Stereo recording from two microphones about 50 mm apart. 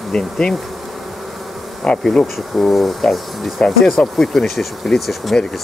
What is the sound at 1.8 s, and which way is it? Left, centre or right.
Speech, centre.